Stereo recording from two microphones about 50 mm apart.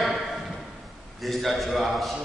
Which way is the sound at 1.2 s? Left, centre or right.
Centre.